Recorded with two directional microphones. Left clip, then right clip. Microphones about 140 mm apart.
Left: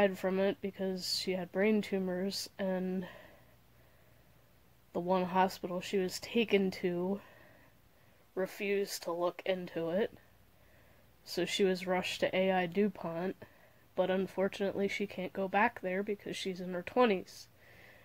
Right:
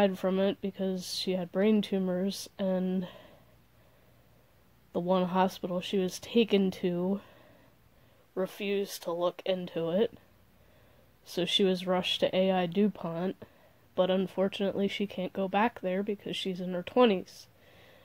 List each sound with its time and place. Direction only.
0.0 s speech: 30° right (ahead or behind)
4.9 s speech: 30° right (ahead or behind)
8.4 s speech: 30° right (ahead or behind)
11.3 s speech: 30° right (ahead or behind)